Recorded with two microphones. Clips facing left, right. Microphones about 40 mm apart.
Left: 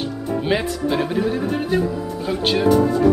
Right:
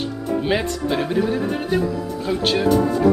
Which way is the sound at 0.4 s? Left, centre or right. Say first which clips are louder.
Left 1 dB; centre.